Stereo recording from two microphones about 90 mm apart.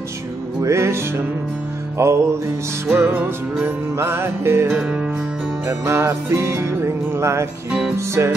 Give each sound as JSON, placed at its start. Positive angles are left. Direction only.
{"t": 0.6, "sound": "music", "side_deg": -30}
{"t": 4.7, "sound": "music", "side_deg": -10}
{"t": 5.7, "sound": "music", "side_deg": -30}